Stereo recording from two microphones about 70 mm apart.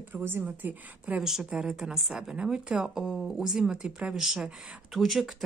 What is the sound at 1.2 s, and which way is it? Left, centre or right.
Speech, centre.